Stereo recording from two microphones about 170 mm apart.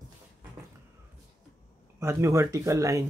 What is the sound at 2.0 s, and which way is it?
Speech, 15° right (ahead or behind).